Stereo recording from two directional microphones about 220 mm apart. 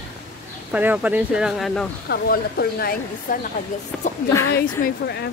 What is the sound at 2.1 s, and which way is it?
Speech, 45° left (ahead or behind).